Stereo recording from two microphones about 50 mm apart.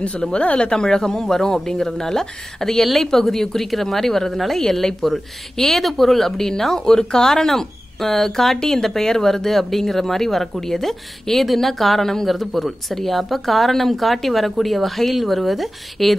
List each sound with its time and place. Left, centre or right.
0.0 s a woman's voice: left; by 16.2 s centre